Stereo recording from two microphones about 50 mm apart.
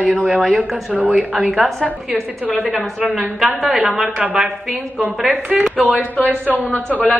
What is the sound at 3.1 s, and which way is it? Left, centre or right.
A woman's voice, centre.